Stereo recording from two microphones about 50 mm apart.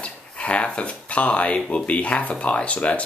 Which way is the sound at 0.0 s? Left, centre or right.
Left.